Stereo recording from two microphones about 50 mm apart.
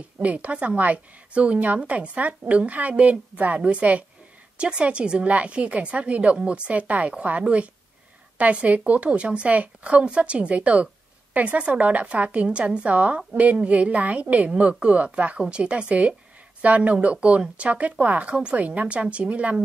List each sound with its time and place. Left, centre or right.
0.2 s a woman's voice: right